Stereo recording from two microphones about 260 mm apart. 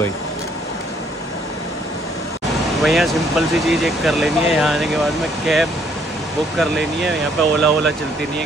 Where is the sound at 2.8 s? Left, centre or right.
Centre.